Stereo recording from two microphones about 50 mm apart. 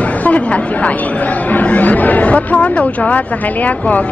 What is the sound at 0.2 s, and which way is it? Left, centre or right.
Speech, left.